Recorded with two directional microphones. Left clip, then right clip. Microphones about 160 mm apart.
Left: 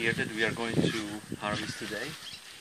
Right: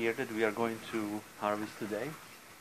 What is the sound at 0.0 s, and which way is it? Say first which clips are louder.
Speech: left 3 dB; 15° left (ahead or behind).